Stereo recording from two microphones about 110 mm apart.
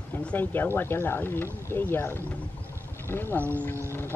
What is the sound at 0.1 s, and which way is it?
Speech, 15° left (ahead or behind).